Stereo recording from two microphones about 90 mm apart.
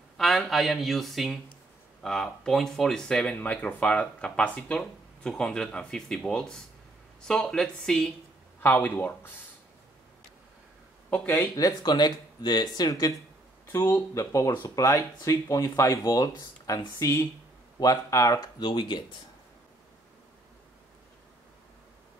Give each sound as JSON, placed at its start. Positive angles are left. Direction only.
{"t": 0.2, "sound": "speech", "side_deg": 5}
{"t": 8.6, "sound": "speech", "side_deg": 20}
{"t": 11.1, "sound": "speech", "side_deg": 20}
{"t": 11.5, "sound": "speech", "side_deg": 50}
{"t": 13.7, "sound": "speech", "side_deg": 25}
{"t": 18.6, "sound": "speech", "side_deg": 60}